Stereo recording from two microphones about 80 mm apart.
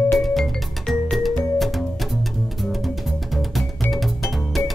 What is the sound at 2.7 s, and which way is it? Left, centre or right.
Music, centre.